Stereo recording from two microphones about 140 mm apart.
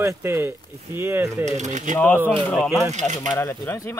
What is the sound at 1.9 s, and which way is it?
Speech, 10° left (ahead or behind).